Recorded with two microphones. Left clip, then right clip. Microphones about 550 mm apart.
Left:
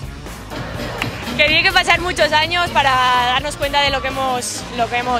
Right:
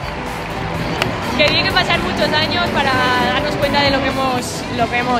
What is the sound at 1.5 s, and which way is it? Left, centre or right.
Speech, left.